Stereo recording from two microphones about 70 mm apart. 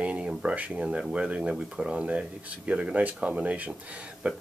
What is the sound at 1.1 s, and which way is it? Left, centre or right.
Speech, centre.